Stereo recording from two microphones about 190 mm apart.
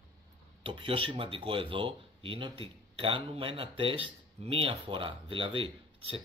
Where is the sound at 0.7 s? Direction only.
30° right (ahead or behind).